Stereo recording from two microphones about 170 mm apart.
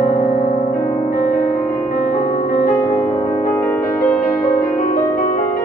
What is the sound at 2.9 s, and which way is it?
Music, 20° left (ahead or behind).